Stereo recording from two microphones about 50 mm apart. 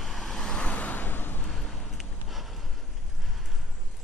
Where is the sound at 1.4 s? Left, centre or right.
Centre.